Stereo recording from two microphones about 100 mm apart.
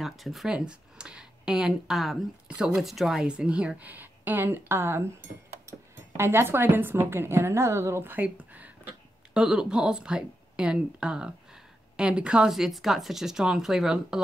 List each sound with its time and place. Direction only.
0.0 s a woman's voice: centre (ahead or behind)